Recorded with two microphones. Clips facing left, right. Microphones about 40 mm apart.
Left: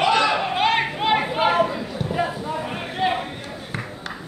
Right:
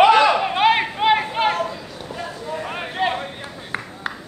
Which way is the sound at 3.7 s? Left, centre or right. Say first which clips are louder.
Right 3 dB; centre.